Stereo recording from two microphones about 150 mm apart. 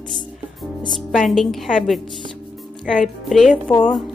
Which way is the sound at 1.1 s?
Centre (ahead or behind).